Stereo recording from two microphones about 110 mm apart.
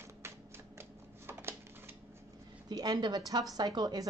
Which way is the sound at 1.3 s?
20° right (ahead or behind).